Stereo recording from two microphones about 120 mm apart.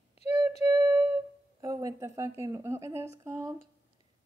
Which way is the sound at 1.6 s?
30° right (ahead or behind).